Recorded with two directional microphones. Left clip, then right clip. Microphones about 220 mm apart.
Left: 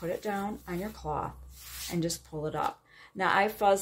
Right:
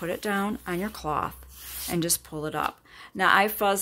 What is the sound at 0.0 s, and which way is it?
Speech, 45° right (ahead or behind).